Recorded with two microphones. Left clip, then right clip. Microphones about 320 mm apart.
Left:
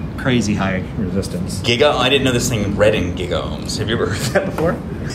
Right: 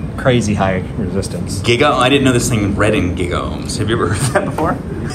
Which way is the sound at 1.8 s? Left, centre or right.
Centre.